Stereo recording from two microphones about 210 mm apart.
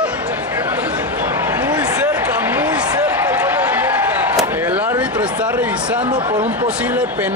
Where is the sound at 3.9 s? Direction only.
10° right (ahead or behind).